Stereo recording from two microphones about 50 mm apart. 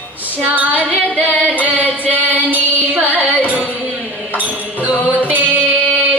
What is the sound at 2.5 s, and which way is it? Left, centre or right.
Music, right.